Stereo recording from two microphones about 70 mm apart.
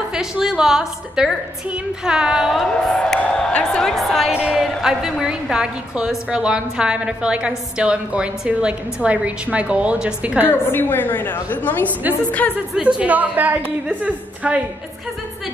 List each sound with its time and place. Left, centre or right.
0.1 s a woman's voice: centre
2.7 s speech: centre
4.3 s speech: centre
4.6 s a woman's voice: centre
10.5 s a woman's voice: left
12.8 s speech: centre